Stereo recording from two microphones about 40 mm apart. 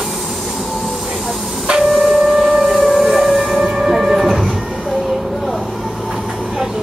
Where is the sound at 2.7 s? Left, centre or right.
Centre.